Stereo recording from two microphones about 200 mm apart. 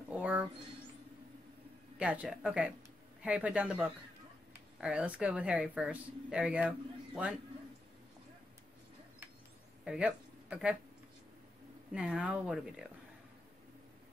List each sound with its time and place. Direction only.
0.1 s a sound: 5° right (ahead or behind)
2.0 s speech: 5° right (ahead or behind)
9.8 s speech: 5° right (ahead or behind)
11.9 s speech: 5° right (ahead or behind)